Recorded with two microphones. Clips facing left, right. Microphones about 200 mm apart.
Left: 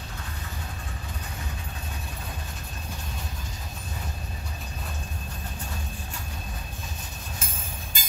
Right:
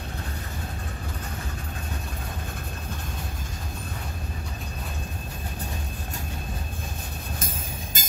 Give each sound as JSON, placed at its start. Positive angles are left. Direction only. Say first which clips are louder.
{"t": 8.0, "sound": "jingle bell", "louder": "right 4 dB", "side_deg": -45}